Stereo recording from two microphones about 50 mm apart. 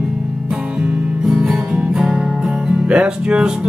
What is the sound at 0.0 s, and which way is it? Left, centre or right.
Music, centre.